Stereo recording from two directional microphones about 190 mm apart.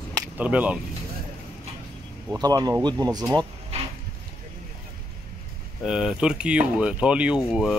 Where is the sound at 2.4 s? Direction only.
20° right (ahead or behind).